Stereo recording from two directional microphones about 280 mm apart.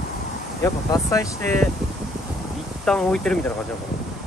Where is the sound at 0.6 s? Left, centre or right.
Centre.